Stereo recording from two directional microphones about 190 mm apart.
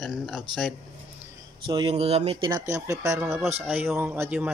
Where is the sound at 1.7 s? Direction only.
25° right (ahead or behind).